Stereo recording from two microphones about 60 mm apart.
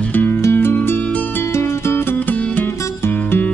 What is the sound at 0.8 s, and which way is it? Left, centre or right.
Music, left.